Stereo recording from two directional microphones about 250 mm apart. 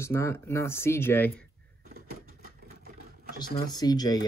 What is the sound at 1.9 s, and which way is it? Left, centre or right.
Vehicle, right.